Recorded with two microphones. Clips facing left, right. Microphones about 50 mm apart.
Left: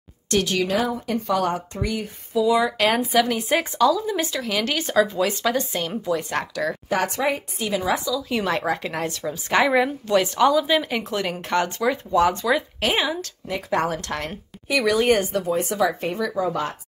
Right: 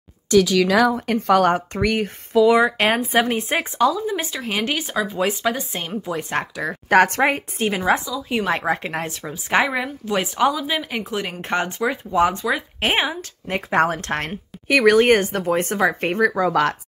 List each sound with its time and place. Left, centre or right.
0.7 s a woman's voice: right
1.0 s a woman's voice: right
2.6 s speech: right
4.8 s a woman's voice: centre
5.1 s speech: right
6.9 s speech: right
9.2 s a woman's voice: centre
9.7 s a woman's voice: centre
10.1 s a woman's voice: centre
11.4 s speech: right
12.8 s speech: right
14.2 s speech: right
16.3 s speech: right